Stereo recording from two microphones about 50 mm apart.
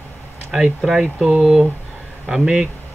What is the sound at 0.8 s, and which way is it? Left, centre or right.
Speech, centre.